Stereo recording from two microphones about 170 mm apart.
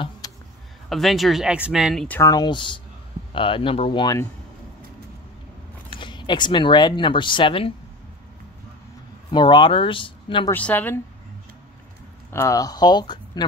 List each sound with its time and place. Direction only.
0.2 s a sound: 20° left (ahead or behind)
0.8 s speech: centre (ahead or behind)
2.0 s speech: 15° left (ahead or behind)
5.9 s speech: 30° left (ahead or behind)
9.3 s speech: 25° left (ahead or behind)
10.5 s a woman's voice: 10° left (ahead or behind)
12.3 s speech: 20° left (ahead or behind)